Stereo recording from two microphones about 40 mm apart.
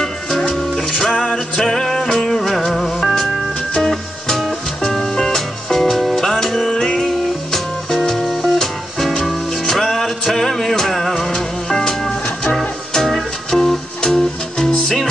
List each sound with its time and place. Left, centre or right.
0.0 s music: centre
6.7 s music: centre
7.0 s music: centre